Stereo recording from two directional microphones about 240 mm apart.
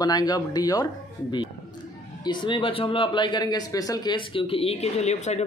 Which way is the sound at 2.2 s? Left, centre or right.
Centre.